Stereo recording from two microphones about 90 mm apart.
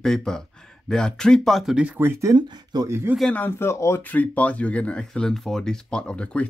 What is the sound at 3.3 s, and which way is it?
Speech, 20° left (ahead or behind).